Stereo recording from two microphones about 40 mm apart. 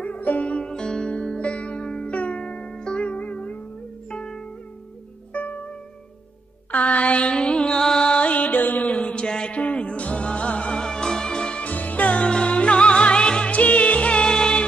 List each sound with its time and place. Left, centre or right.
0.0 s music: left
0.7 s music: centre
3.1 s music: left
4.1 s music: left
5.3 s music: left
6.7 s music: left
8.4 s music: left
8.9 s a sound: left
9.6 s music: left
10.8 s music: centre
11.6 s music: left
12.3 s music: left
14.2 s music: centre